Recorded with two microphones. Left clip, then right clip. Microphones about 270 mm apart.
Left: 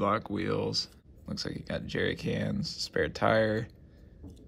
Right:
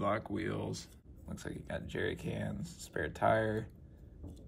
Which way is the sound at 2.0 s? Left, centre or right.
Left.